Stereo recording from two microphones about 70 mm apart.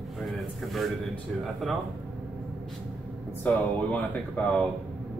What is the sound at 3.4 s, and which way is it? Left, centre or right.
Speech, left.